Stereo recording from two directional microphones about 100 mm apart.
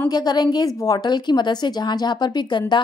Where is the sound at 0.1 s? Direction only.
45° left (ahead or behind).